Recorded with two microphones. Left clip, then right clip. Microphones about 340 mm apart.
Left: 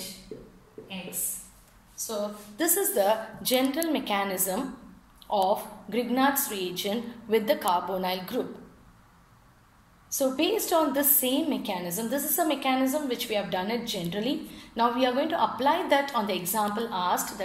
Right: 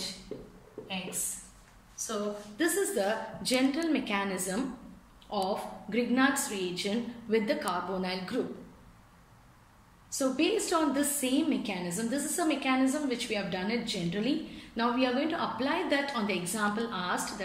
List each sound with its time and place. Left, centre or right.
2.0 s a woman's voice: centre
5.9 s a woman's voice: left
10.3 s a woman's voice: left